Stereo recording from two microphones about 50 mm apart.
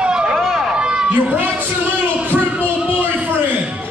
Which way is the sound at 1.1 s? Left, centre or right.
Right.